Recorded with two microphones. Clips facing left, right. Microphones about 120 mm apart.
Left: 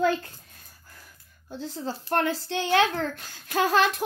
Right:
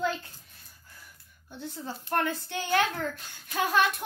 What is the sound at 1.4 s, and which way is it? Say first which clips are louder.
A child's voice: left 5 dB; 90° left.